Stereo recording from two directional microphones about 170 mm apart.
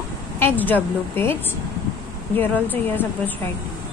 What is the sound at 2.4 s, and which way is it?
Speech, 10° left (ahead or behind).